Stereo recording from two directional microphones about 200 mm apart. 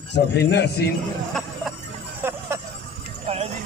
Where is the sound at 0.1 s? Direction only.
55° left (ahead or behind).